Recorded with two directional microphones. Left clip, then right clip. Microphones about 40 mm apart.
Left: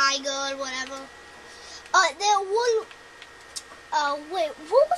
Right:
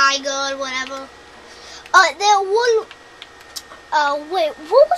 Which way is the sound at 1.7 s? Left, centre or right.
Right.